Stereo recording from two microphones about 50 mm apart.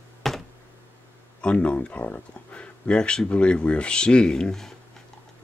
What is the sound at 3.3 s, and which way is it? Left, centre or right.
Speech, left.